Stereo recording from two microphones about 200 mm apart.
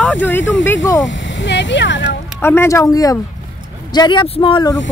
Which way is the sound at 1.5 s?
60° left (ahead or behind).